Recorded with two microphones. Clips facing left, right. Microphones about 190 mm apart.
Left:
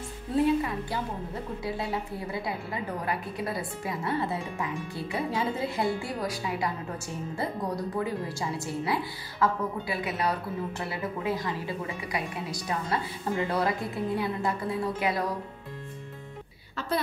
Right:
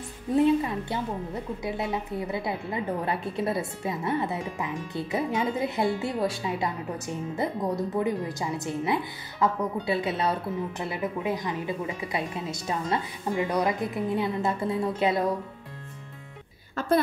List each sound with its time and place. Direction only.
0.4 s a woman's voice: 25° right (ahead or behind)